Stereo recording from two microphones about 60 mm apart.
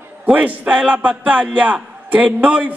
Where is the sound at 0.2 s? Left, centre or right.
Right.